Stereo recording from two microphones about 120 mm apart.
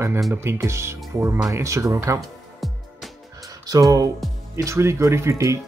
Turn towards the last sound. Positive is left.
turn(degrees=-25)  # may be behind; listen again after turning